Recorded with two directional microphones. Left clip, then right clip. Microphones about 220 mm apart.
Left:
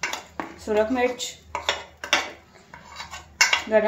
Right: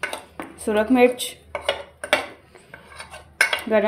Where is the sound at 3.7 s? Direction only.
50° right (ahead or behind).